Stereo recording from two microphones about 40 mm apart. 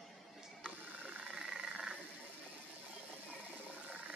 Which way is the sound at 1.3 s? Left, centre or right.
Centre.